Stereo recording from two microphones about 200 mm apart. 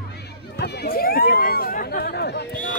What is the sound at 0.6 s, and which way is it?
Chatter, 50° left (ahead or behind).